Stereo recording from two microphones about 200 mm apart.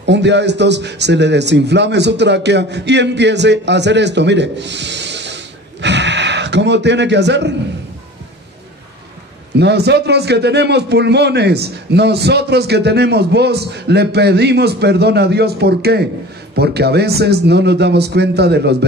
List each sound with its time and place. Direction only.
0.0 s a man's voice: 60° right (ahead or behind)
9.6 s a man's voice: 55° right (ahead or behind)